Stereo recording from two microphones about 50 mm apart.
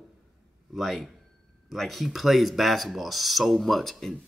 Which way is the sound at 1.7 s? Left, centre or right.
Centre.